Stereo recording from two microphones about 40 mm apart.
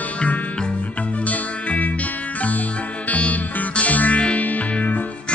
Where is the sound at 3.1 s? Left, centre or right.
Left.